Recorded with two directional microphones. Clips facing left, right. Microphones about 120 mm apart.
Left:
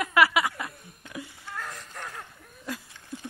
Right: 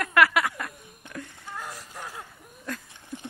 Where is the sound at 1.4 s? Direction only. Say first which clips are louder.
Even; 10° right (ahead or behind).